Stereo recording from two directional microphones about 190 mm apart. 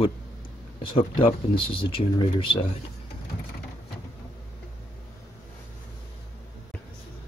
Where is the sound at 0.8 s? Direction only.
25° left (ahead or behind).